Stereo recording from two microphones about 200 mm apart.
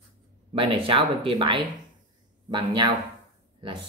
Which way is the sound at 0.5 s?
25° right (ahead or behind).